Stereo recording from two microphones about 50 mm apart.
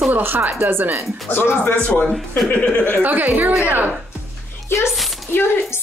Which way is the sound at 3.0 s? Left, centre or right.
Right.